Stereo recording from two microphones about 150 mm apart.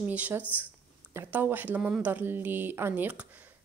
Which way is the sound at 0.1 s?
10° right (ahead or behind).